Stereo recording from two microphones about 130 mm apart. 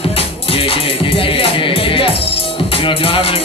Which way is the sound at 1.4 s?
45° left (ahead or behind).